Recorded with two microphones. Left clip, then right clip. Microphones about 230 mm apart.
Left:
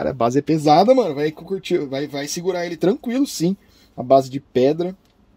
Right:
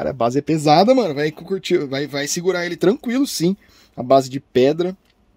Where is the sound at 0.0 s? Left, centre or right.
Centre.